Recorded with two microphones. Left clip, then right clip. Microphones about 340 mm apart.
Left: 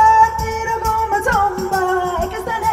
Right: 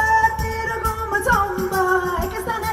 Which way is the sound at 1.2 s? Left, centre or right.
Centre.